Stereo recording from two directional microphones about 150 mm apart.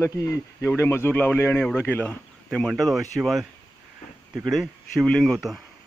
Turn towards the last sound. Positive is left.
turn(degrees=0)  # may be behind; listen again after turning